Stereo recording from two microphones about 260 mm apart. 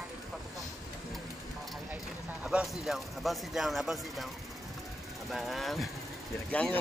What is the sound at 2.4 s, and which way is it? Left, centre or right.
Speech, centre.